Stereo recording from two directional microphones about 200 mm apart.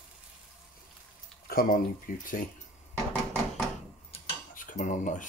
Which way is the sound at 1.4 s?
45° left (ahead or behind).